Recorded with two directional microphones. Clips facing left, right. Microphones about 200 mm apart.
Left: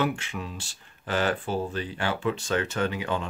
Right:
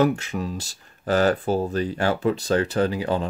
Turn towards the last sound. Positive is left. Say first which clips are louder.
# right 6 dB
turn(degrees=-35)  # may be behind; listen again after turning